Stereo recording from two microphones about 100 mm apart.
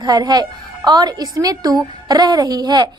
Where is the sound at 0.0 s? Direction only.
45° right (ahead or behind).